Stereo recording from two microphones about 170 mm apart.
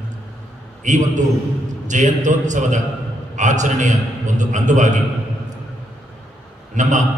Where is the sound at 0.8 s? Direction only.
45° right (ahead or behind).